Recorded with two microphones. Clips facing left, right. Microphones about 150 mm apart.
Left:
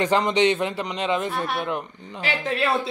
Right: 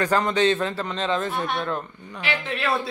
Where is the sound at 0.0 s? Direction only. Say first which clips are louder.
Left 1 dB; 20° left (ahead or behind).